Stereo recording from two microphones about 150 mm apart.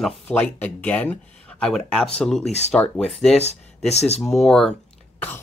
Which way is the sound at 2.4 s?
45° left (ahead or behind).